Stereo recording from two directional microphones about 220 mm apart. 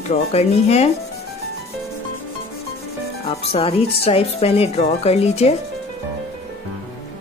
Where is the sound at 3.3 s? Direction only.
25° left (ahead or behind).